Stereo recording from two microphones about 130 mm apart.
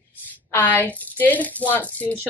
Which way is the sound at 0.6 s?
15° left (ahead or behind).